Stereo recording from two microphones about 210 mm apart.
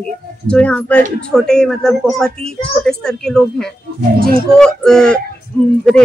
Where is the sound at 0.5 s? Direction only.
5° left (ahead or behind).